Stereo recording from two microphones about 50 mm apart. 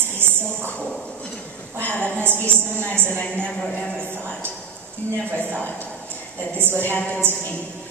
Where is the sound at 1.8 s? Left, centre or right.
Left.